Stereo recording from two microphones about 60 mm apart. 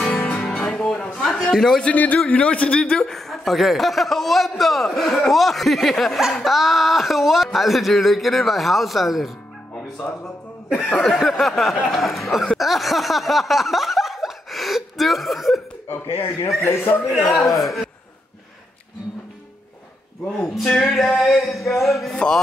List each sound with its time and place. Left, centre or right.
0.0 s music: centre
1.2 s speech: centre
1.9 s a man's voice: left
3.0 s a man's voice: centre
10.9 s speech: centre
11.1 s a man's voice: centre
12.5 s a sound: centre
16.6 s a man's voice: left
17.0 s a man's voice: centre
20.6 s a man's voice: centre
22.1 s speech: centre